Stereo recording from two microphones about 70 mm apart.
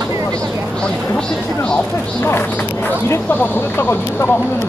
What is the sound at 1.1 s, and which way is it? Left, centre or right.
Speech, centre.